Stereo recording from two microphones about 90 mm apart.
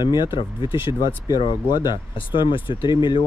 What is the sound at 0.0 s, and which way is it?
Speech, 55° left (ahead or behind).